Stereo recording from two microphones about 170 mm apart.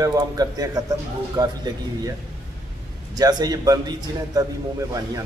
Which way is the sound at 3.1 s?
25° right (ahead or behind).